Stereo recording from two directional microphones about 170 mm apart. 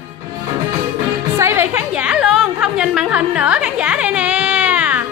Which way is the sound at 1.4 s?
15° right (ahead or behind).